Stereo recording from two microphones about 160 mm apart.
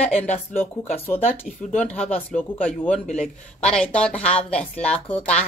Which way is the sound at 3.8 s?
5° left (ahead or behind).